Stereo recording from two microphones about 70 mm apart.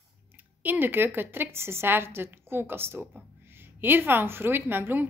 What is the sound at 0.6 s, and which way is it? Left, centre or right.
A woman's voice, right.